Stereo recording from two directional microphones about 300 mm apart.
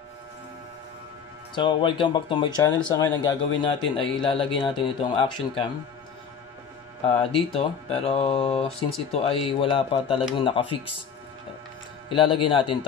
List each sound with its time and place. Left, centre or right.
1.5 s speech: centre
7.1 s speech: centre
12.1 s speech: centre